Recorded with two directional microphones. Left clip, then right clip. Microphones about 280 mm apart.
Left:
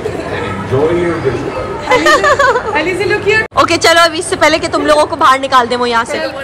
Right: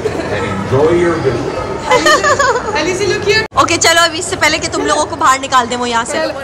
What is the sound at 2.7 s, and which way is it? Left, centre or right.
Speech, left.